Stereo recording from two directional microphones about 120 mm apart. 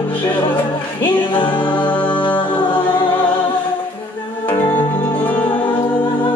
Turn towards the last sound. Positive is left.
turn(degrees=15)  # may be behind; listen again after turning